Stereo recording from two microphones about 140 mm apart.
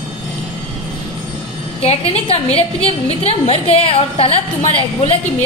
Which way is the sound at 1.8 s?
45° left (ahead or behind).